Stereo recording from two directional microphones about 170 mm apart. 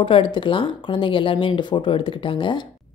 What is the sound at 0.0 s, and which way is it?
Speech, 30° left (ahead or behind).